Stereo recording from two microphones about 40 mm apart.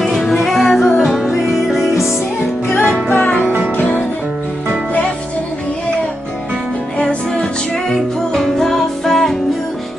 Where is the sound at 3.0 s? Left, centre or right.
Left.